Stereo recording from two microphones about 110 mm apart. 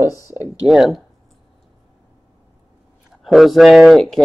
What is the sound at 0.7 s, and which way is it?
Speech, centre (ahead or behind).